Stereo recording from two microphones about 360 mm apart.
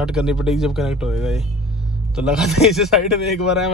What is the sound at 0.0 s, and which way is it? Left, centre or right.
A man's voice, centre.